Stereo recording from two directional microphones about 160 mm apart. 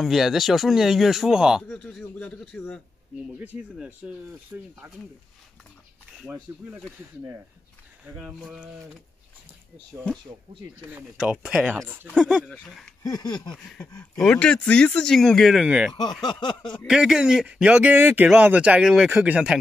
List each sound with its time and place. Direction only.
0.0 s speech: centre (ahead or behind)
3.3 s speech: 5° right (ahead or behind)
6.5 s speech: 15° right (ahead or behind)
8.0 s speech: 5° right (ahead or behind)
10.9 s speech: 10° right (ahead or behind)
13.0 s a sound: 25° left (ahead or behind)
13.5 s speech: 5° left (ahead or behind)